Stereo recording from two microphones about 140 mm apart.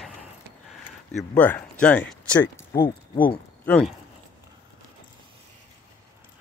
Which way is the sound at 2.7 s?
90° left.